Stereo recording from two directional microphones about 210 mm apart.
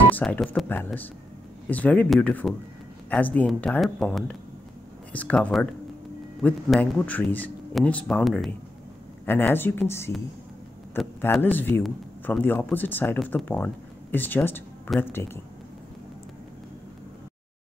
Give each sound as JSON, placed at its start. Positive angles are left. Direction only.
{"t": 0.1, "sound": "speech", "side_deg": 5}